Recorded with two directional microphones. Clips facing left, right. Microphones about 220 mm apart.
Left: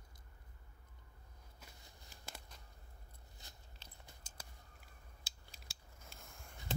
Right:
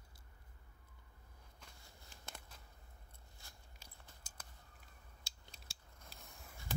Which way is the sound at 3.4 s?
20° left (ahead or behind).